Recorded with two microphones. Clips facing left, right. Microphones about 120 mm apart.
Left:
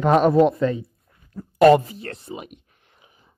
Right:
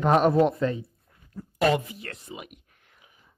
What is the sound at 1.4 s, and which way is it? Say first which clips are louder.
Speech: left 10 dB; 55° left (ahead or behind).